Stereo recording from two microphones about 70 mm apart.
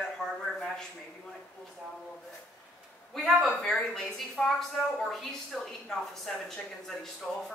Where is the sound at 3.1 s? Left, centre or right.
Centre.